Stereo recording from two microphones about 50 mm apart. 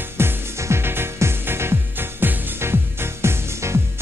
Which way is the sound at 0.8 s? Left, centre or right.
Right.